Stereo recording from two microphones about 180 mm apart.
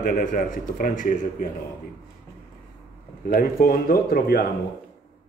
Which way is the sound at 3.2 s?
50° left (ahead or behind).